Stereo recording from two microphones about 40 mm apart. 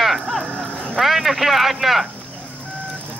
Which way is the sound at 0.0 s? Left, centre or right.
Centre.